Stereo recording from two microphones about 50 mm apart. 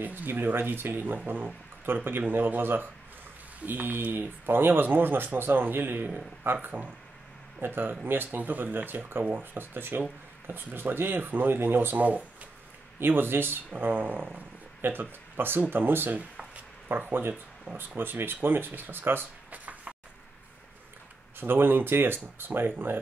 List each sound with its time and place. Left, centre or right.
0.0 s speech: right
13.0 s speech: right
17.7 s speech: right
19.5 s a sound: right
21.4 s speech: right